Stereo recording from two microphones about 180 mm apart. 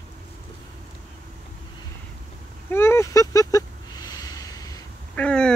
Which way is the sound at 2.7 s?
15° left (ahead or behind).